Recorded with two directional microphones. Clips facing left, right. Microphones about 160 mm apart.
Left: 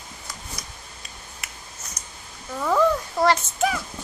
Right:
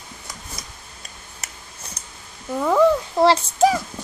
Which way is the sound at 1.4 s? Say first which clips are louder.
Right 3 dB; 40° right (ahead or behind).